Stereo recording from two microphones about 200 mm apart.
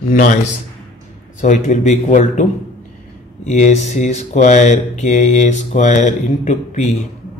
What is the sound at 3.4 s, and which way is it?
Speech, 35° left (ahead or behind).